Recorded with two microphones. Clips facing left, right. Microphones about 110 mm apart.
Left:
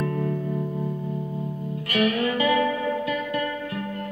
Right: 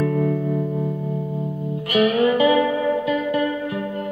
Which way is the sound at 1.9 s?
20° right (ahead or behind).